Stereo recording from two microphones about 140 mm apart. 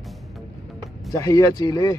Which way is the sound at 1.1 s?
25° left (ahead or behind).